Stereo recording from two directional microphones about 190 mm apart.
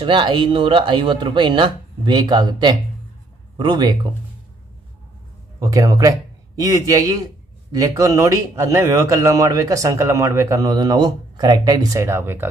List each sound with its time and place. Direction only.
0.0 s speech: 25° right (ahead or behind)
5.6 s a man's voice: 15° right (ahead or behind)